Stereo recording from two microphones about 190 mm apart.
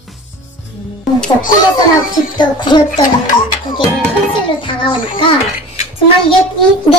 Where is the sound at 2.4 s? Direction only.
25° left (ahead or behind).